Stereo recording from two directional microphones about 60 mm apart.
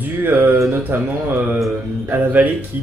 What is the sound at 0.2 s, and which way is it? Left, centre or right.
Speech, right.